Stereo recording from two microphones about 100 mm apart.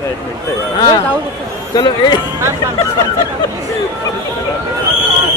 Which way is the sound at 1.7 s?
50° left (ahead or behind).